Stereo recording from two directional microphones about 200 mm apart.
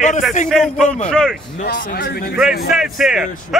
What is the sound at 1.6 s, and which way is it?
Speech, 45° left (ahead or behind).